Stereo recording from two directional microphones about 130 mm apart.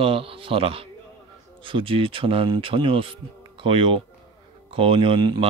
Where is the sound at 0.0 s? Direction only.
45° right (ahead or behind).